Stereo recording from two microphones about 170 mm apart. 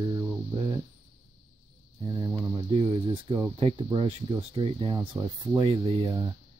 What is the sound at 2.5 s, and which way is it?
Speech, 35° right (ahead or behind).